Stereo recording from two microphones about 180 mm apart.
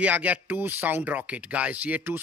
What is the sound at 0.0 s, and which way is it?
A man's voice, 10° right (ahead or behind).